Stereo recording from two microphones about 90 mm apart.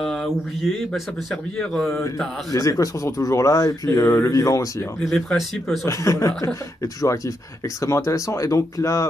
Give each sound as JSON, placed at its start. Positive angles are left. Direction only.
{"t": 0.0, "sound": "speech", "side_deg": 5}
{"t": 2.5, "sound": "speech", "side_deg": 40}
{"t": 5.0, "sound": "speech", "side_deg": 5}
{"t": 5.9, "sound": "speech", "side_deg": 35}